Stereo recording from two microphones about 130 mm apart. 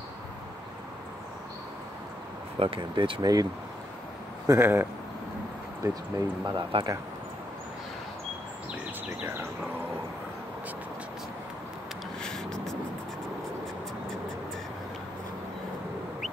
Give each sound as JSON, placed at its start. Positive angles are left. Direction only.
{"t": 2.6, "sound": "speech", "side_deg": -45}
{"t": 4.5, "sound": "speech", "side_deg": -20}
{"t": 6.1, "sound": "speech", "side_deg": -35}
{"t": 9.2, "sound": "speech", "side_deg": -15}
{"t": 12.2, "sound": "a sound", "side_deg": 5}